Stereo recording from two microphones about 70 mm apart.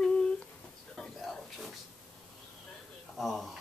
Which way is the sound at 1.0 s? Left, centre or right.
Centre.